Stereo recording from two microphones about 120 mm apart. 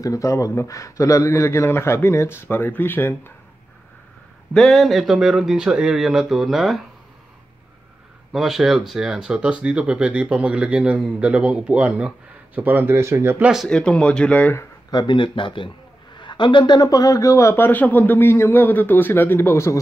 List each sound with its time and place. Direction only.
0.0 s a man's voice: 25° left (ahead or behind)
4.6 s speech: centre (ahead or behind)
8.3 s speech: 5° right (ahead or behind); by 13.5 s 20° right (ahead or behind)
13.7 s speech: 5° left (ahead or behind)
14.9 s a man's voice: 40° left (ahead or behind); by 19.8 s 25° left (ahead or behind)